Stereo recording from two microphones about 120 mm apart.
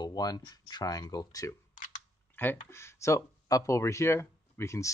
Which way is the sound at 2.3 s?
15° left (ahead or behind).